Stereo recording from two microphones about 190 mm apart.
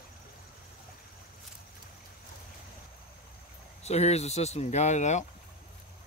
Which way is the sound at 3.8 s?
35° left (ahead or behind).